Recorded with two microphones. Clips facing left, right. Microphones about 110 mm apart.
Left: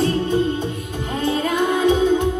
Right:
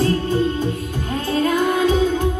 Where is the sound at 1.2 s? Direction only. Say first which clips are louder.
Right 1 dB; 20° left (ahead or behind).